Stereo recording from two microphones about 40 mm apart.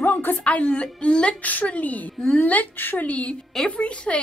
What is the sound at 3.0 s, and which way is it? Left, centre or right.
Speech, left.